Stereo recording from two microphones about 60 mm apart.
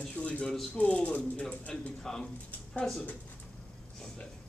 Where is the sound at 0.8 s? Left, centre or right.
Left.